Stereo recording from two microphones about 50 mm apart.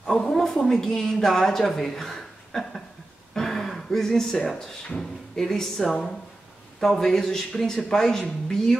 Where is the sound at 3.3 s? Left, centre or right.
Centre.